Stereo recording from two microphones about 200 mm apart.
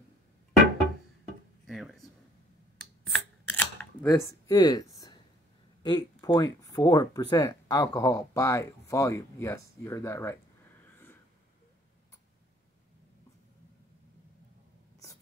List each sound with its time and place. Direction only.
1.7 s speech: centre (ahead or behind)
3.1 s camera: 10° left (ahead or behind)
5.8 s speech: 20° left (ahead or behind)